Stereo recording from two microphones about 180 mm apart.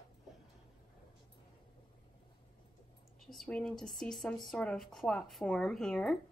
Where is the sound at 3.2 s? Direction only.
Centre (ahead or behind).